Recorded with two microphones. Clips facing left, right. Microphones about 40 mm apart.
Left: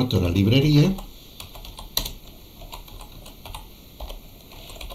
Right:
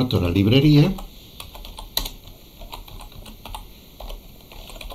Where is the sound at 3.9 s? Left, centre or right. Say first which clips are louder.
Right 1 dB; centre.